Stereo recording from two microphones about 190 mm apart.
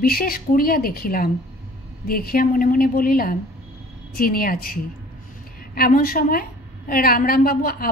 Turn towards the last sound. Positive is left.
turn(degrees=50)  # may be behind; listen again after turning